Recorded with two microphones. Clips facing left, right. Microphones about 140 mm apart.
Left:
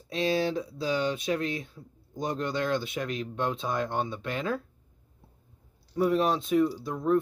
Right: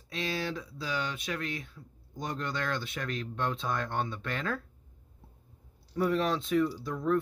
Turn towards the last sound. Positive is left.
turn(degrees=20)  # may be behind; listen again after turning